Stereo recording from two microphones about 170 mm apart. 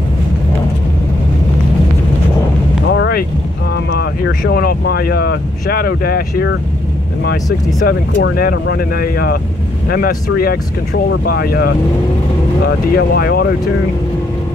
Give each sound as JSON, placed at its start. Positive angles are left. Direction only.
{"t": 2.9, "sound": "boat", "side_deg": 80}
{"t": 4.4, "sound": "speech", "side_deg": 65}
{"t": 7.8, "sound": "speech", "side_deg": 60}